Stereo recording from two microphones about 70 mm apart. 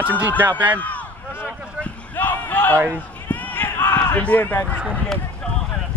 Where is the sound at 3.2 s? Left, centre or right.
Left.